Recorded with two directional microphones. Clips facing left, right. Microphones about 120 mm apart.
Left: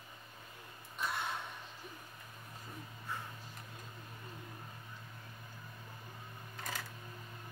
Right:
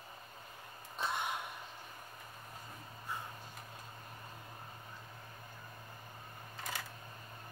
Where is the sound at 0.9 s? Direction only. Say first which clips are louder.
Right 1 dB; 20° right (ahead or behind).